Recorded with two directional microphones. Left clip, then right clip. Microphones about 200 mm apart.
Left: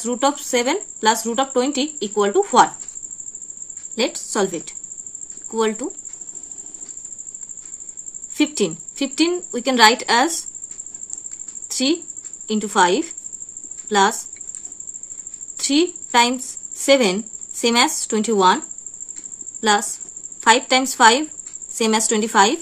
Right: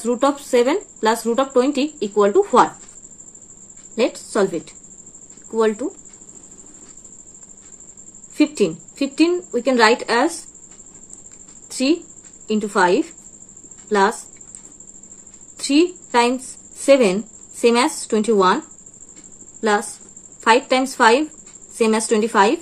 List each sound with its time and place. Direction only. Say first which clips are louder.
0.0 s speech: right 1 dB; 15° left (ahead or behind)
3.9 s a woman's voice: right 2 dB; 15° left (ahead or behind)
8.4 s a woman's voice: right 2 dB; 25° left (ahead or behind)
11.7 s a woman's voice: right 1 dB; 20° left (ahead or behind)
15.5 s a woman's voice: right 2 dB; 20° left (ahead or behind)
19.6 s a woman's voice: left 1 dB; 20° left (ahead or behind)